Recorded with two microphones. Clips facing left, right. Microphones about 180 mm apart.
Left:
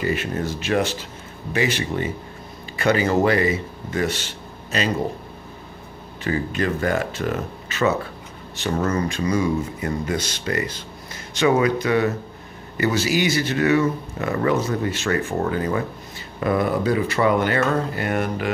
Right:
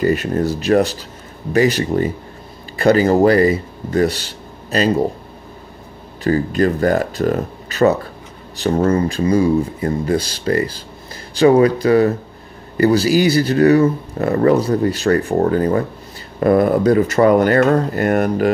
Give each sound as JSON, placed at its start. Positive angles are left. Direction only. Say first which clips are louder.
{"t": 0.0, "sound": "speech", "louder": "right 7 dB", "side_deg": -40}
{"t": 6.2, "sound": "speech", "louder": "right 7 dB", "side_deg": -40}